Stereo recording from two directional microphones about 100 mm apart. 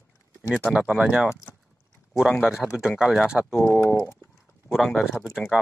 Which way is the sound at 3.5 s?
20° left (ahead or behind).